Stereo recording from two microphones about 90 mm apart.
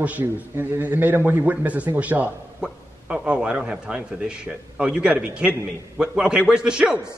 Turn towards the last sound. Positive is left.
turn(degrees=-10)  # may be behind; listen again after turning